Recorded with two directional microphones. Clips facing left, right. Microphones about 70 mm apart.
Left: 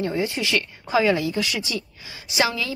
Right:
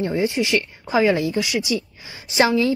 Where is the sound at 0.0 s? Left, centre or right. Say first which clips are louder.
Right 4 dB; right.